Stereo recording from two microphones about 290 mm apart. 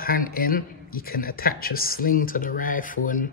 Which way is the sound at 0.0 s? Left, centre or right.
Left.